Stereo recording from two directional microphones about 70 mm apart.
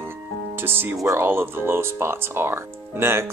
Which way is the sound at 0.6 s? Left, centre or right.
Right.